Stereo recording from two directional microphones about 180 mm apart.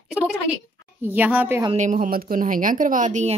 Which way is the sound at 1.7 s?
45° right (ahead or behind).